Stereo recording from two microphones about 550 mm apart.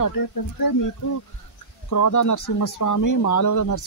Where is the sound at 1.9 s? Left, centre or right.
Left.